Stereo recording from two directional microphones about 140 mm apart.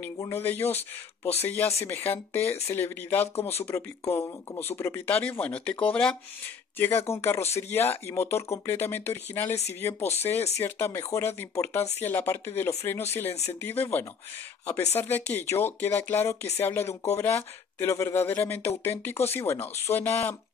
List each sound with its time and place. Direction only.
0.2 s speech: 15° left (ahead or behind)
13.3 s speech: 50° left (ahead or behind)
13.6 s speech: 15° left (ahead or behind)